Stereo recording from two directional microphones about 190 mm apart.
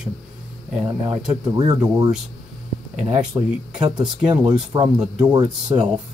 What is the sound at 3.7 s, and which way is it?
Speech, 20° right (ahead or behind).